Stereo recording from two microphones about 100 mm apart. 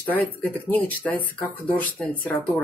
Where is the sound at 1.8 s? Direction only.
15° left (ahead or behind).